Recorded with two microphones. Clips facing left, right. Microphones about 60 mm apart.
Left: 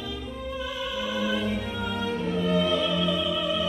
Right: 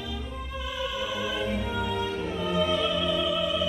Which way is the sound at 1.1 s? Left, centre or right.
Centre.